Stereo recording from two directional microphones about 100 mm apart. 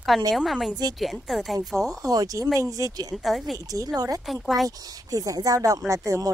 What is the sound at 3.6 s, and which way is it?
Speech, 35° right (ahead or behind).